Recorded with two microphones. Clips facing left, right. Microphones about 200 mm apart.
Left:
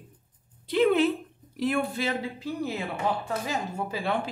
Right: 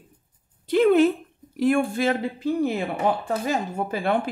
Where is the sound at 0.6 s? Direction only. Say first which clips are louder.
Right 5 dB; 45° right (ahead or behind).